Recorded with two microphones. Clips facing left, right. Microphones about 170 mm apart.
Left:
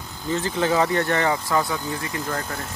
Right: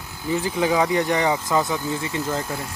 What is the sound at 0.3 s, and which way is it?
Speech, 10° right (ahead or behind).